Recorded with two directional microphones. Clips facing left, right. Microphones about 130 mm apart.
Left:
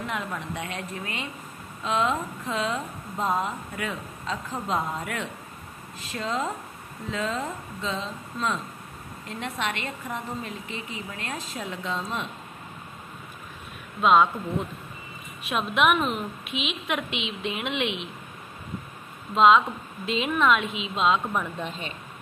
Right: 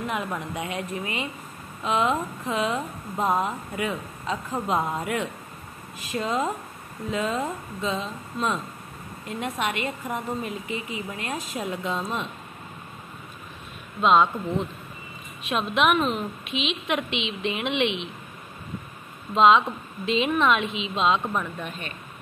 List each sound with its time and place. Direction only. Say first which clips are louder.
0.0 s a woman's voice: right 3 dB; 10° right (ahead or behind)
14.0 s a woman's voice: even; 5° left (ahead or behind)
19.3 s a woman's voice: even; centre (ahead or behind)
21.5 s speech: left 1 dB; 25° left (ahead or behind)